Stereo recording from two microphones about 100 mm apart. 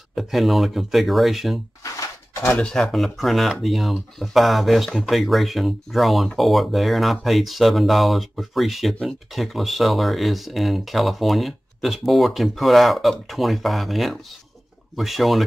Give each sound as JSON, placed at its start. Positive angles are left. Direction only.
{"t": 0.1, "sound": "speech", "side_deg": 0}
{"t": 1.8, "sound": "a sound", "side_deg": 30}
{"t": 2.5, "sound": "speech", "side_deg": 5}